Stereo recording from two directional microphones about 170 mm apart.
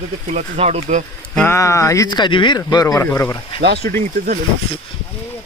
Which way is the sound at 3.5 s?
70° right (ahead or behind).